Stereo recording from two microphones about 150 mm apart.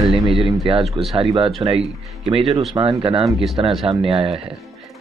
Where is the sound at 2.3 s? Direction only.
40° right (ahead or behind).